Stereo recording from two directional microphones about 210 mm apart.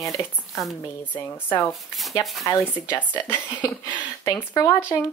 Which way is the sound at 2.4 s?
10° left (ahead or behind).